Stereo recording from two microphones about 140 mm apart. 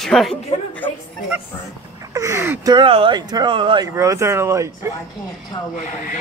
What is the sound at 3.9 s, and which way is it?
Speech, 20° right (ahead or behind).